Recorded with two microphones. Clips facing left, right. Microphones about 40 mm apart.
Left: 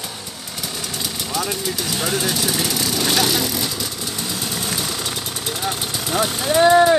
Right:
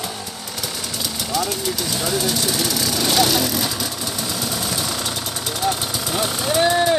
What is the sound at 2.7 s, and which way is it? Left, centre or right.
Vehicle, centre.